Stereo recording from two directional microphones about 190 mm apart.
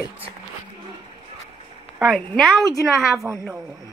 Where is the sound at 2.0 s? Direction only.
Centre (ahead or behind).